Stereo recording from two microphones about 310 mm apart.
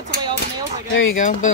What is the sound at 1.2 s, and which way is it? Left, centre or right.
Speech, left.